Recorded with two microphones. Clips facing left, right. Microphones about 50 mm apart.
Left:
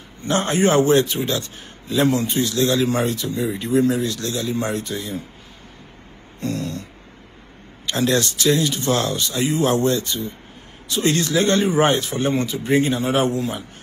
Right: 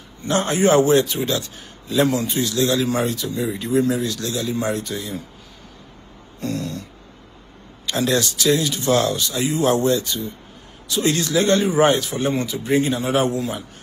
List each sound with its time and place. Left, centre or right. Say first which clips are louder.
0.2 s a man's voice: even; left
6.4 s a sound: even; left
7.9 s a man's voice: left 1 dB; left